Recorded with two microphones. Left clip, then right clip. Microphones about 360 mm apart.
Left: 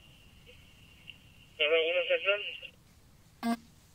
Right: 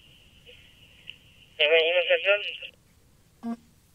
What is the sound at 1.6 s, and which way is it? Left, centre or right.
Telephone, centre.